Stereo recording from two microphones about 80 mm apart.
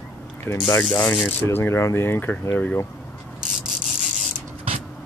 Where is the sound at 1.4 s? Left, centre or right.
Left.